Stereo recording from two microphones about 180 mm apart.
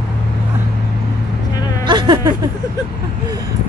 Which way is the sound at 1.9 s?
25° right (ahead or behind).